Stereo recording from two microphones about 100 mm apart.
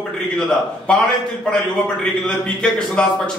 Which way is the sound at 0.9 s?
10° left (ahead or behind).